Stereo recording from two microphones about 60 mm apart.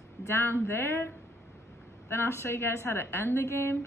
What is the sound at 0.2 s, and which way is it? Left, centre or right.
A woman's voice, left.